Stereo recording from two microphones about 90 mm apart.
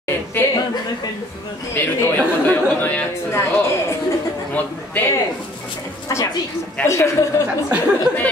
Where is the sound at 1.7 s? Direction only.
25° left (ahead or behind).